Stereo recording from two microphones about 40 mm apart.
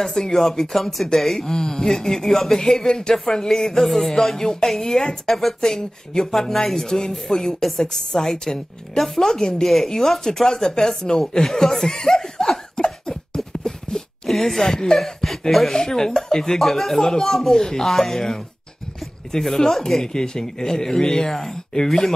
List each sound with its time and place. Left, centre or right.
0.0 s speech: centre
10.7 s snicker: centre
13.5 s beatboxing: centre
13.9 s a sound: centre
15.5 s speech: centre